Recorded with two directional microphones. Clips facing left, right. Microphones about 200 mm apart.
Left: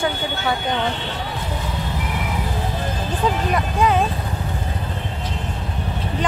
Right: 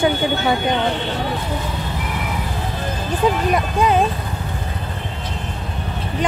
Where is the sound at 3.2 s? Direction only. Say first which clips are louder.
Right 4 dB; 10° right (ahead or behind).